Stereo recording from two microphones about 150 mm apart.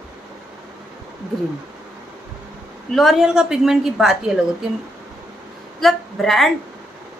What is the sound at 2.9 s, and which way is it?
A woman's voice, centre (ahead or behind).